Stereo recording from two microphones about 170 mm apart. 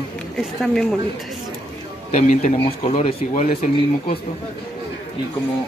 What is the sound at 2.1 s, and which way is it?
Speech, 45° left (ahead or behind).